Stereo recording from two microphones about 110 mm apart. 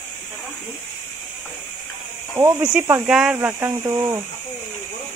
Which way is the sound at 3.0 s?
5° right (ahead or behind).